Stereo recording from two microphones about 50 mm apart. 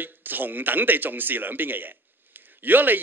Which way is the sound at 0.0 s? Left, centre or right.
Right.